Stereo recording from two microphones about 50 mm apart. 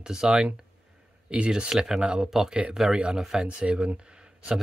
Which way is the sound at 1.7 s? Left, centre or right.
Centre.